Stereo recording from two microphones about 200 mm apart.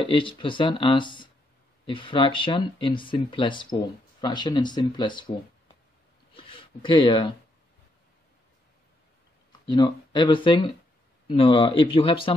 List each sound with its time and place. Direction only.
0.0 s speech: 25° left (ahead or behind)
6.3 s speech: 25° left (ahead or behind)
9.7 s speech: 20° left (ahead or behind)